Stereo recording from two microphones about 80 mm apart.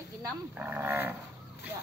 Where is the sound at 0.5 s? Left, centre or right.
Right.